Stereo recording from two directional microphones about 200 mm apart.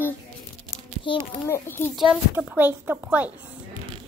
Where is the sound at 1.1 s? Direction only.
25° left (ahead or behind).